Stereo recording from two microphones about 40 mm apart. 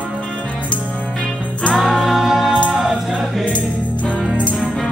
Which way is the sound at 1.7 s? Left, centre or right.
Centre.